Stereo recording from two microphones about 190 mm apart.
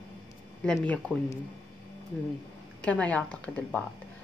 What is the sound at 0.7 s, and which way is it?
Speech, 5° left (ahead or behind).